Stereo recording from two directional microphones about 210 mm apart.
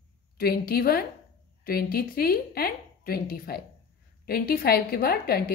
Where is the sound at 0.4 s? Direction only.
45° left (ahead or behind).